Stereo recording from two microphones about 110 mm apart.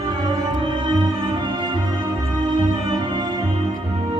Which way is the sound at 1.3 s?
45° right (ahead or behind).